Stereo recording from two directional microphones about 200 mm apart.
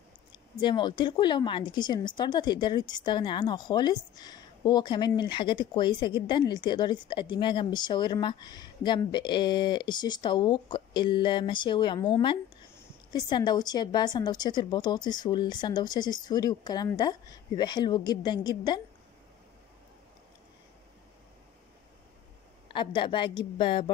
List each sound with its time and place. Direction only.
0.3 s speech: 25° left (ahead or behind)
22.7 s speech: 25° left (ahead or behind)